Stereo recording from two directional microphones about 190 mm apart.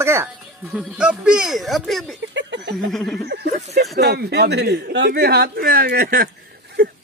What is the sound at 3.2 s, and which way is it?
Speech, 60° right (ahead or behind).